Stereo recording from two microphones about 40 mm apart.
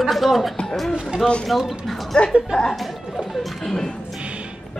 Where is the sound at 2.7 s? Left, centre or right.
Centre.